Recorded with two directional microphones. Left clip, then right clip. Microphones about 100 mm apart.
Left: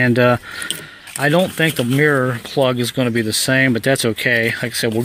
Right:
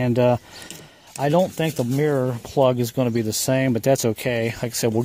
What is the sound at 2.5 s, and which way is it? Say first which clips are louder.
Speech: left 1 dB; 45° right (ahead or behind).